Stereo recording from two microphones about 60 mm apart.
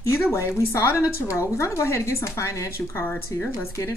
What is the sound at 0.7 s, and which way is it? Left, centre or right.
Speech, left.